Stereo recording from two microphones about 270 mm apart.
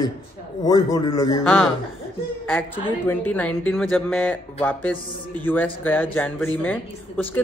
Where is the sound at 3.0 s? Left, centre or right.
Centre.